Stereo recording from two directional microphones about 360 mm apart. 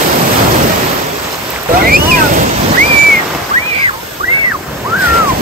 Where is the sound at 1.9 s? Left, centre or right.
Right.